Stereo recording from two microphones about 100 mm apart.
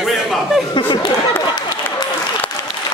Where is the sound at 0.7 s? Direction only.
50° left (ahead or behind).